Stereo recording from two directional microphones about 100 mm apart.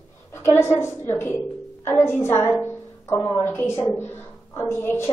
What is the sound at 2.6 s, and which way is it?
Music, 25° left (ahead or behind).